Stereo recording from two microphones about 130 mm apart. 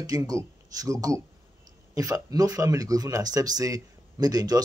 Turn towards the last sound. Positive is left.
turn(degrees=-30)  # may be behind; listen again after turning